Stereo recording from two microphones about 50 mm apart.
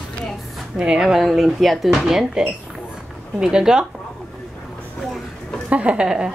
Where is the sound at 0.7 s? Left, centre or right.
Centre.